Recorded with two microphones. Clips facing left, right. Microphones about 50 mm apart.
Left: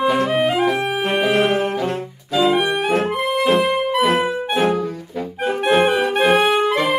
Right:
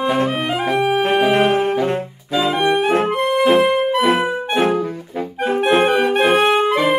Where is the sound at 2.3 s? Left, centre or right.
Centre.